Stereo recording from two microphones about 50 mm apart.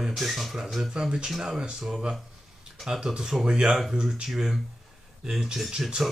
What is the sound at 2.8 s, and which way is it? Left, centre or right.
Speech, centre.